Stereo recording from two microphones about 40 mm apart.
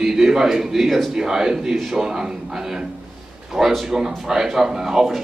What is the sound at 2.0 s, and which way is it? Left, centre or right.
Speech, centre.